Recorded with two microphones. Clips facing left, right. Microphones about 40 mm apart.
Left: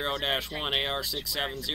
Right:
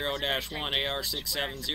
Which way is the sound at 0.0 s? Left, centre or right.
Centre.